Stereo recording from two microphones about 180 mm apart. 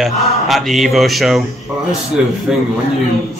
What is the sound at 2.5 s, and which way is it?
Speech, 5° right (ahead or behind).